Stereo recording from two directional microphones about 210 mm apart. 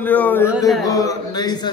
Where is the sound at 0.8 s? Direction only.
15° left (ahead or behind).